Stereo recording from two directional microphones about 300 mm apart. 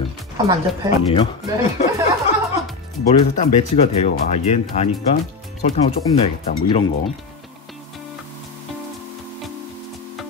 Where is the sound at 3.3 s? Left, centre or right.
Left.